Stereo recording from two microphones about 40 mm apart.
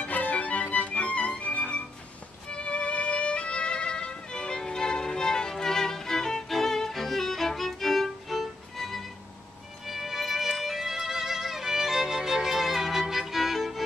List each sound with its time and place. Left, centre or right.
0.0 s music: left; by 10.5 s centre
10.6 s violin: centre